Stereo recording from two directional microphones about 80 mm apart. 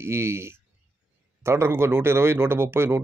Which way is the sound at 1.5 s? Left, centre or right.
Right.